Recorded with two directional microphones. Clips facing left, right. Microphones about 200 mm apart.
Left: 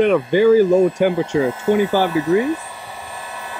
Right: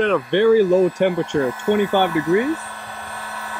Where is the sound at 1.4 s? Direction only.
25° left (ahead or behind).